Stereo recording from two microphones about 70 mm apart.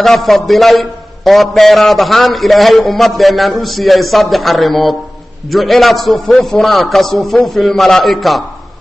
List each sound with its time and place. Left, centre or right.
0.0 s a man's voice: centre